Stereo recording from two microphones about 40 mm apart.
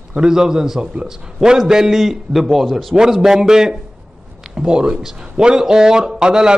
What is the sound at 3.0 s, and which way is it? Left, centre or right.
A man's voice, centre.